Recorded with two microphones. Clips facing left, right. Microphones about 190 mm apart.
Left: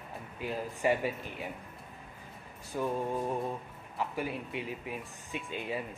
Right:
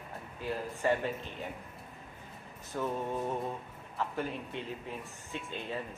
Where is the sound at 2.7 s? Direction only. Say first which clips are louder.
Left 2 dB; 15° left (ahead or behind).